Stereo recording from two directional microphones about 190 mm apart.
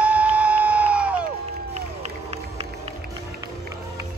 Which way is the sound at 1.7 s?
35° right (ahead or behind).